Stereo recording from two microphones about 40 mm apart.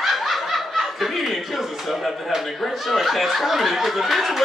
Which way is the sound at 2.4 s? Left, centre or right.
Centre.